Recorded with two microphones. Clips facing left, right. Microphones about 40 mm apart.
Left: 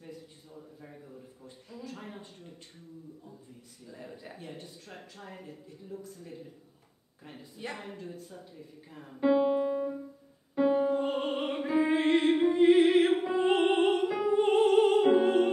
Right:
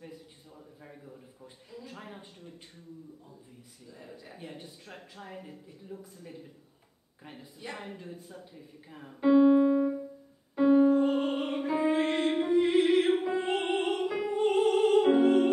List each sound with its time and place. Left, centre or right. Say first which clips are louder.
0.0 s a sound: left 1 dB; centre
3.9 s speech: left 3 dB; centre
4.4 s speech: even; centre
7.7 s speech: even; centre
8.0 s speech: left 1 dB; centre
9.1 s speech: right 4 dB; centre
10.5 s music: right 4 dB; centre
11.9 s music: left 5 dB; centre
12.9 s music: left 1 dB; centre
13.5 s music: left 7 dB; centre
13.8 s music: left 3 dB; centre
14.3 s music: left 2 dB; centre
15.2 s music: right 2 dB; centre